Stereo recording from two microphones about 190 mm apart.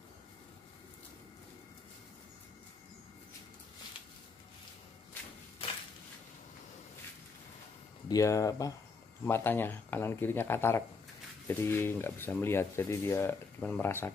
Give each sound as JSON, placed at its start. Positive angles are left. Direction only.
{"t": 8.1, "sound": "speech", "side_deg": 15}